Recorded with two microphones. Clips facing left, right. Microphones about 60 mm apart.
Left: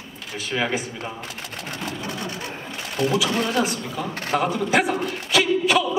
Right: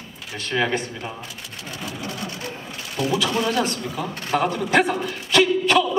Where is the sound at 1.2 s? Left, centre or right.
Left.